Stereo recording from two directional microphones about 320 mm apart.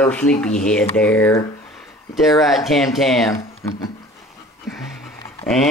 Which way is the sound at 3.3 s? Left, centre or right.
Centre.